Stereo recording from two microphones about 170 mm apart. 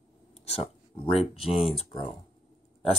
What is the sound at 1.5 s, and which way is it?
Speech, centre (ahead or behind).